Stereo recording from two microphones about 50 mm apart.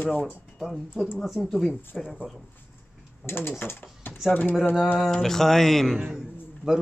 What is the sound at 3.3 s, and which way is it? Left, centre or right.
Speech, left.